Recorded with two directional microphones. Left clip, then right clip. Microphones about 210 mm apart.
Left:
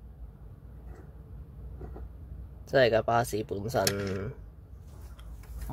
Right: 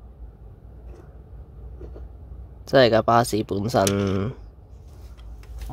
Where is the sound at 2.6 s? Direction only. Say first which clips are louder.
Right 7 dB; 30° right (ahead or behind).